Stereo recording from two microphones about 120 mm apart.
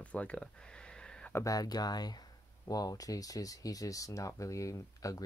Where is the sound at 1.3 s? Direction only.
30° left (ahead or behind).